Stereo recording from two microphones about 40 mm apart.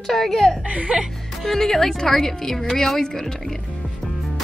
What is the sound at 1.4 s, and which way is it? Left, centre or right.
A woman's voice, centre.